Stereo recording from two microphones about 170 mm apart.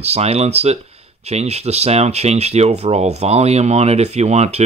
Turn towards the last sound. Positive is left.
turn(degrees=-40)  # may be behind; listen again after turning